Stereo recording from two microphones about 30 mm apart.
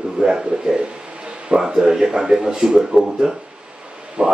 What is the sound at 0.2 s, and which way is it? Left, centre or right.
Speech, centre.